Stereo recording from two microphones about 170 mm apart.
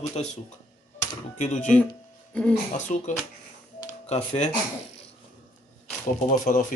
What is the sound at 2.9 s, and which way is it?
Speech, 45° left (ahead or behind).